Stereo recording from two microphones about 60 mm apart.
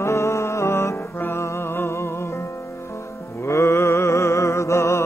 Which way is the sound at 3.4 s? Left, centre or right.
Left.